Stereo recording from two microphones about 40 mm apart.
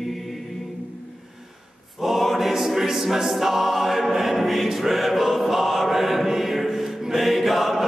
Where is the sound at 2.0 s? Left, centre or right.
Centre.